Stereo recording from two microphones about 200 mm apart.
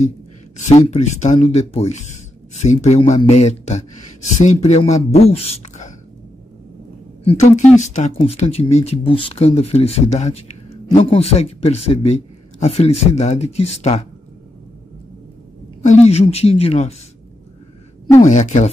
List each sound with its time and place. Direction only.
0.7 s speech: 35° left (ahead or behind)
7.2 s speech: 35° left (ahead or behind)
15.8 s speech: 35° left (ahead or behind)
18.2 s speech: 35° left (ahead or behind)